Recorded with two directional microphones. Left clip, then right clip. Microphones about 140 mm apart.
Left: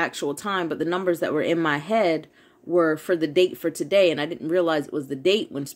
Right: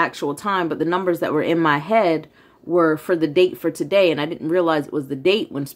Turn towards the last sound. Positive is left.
turn(degrees=15)  # may be behind; listen again after turning